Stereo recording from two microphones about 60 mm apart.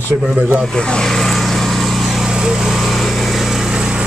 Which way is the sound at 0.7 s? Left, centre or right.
Centre.